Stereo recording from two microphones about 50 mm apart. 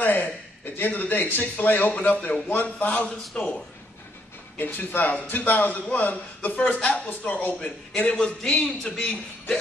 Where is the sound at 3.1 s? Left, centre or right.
Centre.